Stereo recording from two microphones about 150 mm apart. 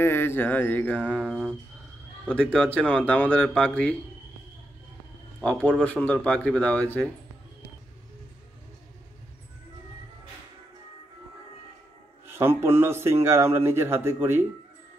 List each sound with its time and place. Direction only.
0.0 s speech: 15° left (ahead or behind)
1.3 s a man's voice: 10° right (ahead or behind)
2.2 s speech: 5° left (ahead or behind)
5.4 s speech: 5° left (ahead or behind)
12.3 s a man's voice: 15° right (ahead or behind)